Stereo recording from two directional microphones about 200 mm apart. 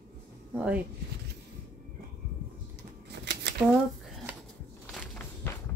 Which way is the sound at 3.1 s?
55° right (ahead or behind).